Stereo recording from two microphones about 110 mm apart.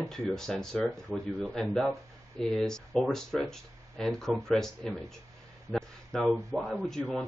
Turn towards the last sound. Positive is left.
turn(degrees=5)  # may be behind; listen again after turning